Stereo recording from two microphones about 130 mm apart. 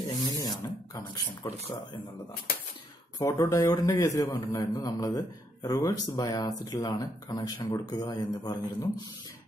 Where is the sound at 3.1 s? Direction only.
25° left (ahead or behind).